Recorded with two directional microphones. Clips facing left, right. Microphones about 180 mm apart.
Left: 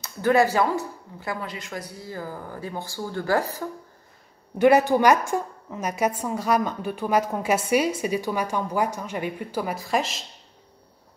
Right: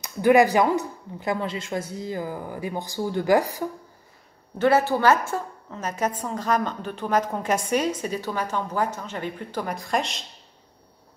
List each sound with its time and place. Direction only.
0.0 s speech: 15° right (ahead or behind)
4.6 s a woman's voice: 15° left (ahead or behind)